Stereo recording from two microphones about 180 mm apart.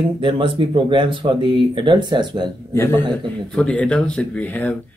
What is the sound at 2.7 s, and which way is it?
Speech, 10° left (ahead or behind).